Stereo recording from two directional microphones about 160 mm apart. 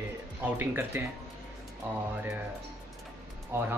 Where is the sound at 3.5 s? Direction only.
15° right (ahead or behind).